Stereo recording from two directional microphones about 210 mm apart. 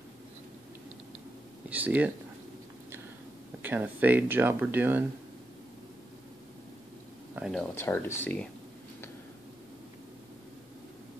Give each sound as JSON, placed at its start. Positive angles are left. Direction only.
{"t": 1.7, "sound": "speech", "side_deg": -5}
{"t": 3.6, "sound": "speech", "side_deg": -10}
{"t": 7.3, "sound": "speech", "side_deg": 0}
{"t": 7.7, "sound": "speech", "side_deg": 10}